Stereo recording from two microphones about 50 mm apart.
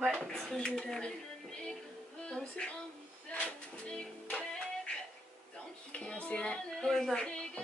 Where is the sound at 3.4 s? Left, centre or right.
Left.